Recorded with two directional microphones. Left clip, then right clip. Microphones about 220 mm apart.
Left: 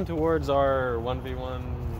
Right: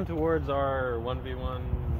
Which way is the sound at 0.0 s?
50° left (ahead or behind).